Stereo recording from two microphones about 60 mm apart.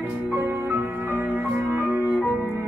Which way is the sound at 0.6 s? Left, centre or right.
Right.